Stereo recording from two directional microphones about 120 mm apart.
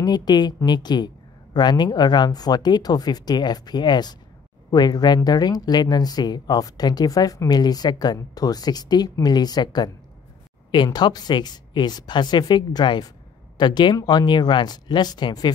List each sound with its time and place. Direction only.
0.0 s speech: 35° left (ahead or behind)